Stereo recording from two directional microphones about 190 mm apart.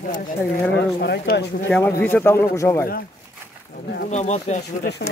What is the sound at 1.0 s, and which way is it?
Speech, 60° left (ahead or behind).